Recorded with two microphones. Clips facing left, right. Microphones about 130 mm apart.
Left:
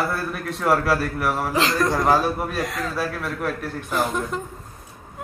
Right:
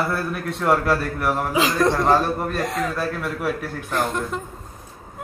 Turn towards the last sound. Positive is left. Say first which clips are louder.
# even
turn(degrees=0)  # may be behind; listen again after turning